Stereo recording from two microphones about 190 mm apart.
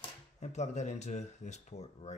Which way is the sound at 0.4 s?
35° left (ahead or behind).